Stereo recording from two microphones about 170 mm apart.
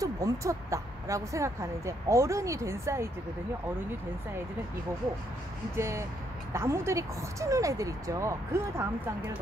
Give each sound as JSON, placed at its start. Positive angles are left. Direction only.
{"t": 0.0, "sound": "speech", "side_deg": -20}
{"t": 5.8, "sound": "speech", "side_deg": -15}